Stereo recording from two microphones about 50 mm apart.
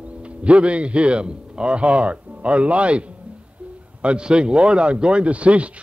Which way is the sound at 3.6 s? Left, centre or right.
Right.